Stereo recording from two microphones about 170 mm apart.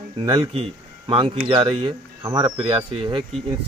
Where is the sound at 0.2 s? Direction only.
25° right (ahead or behind).